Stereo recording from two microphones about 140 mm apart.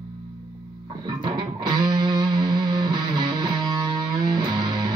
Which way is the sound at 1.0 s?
30° right (ahead or behind).